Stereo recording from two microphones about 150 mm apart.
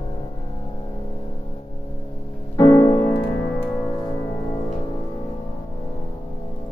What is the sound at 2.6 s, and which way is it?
Music, 30° left (ahead or behind).